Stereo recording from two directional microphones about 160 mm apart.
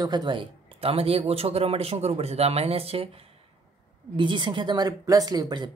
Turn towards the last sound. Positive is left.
turn(degrees=-25)  # may be behind; listen again after turning